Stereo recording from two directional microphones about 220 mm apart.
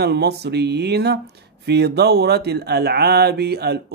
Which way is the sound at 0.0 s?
50° right (ahead or behind).